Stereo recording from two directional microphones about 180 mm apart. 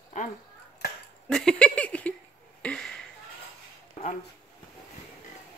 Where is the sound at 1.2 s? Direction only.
5° left (ahead or behind).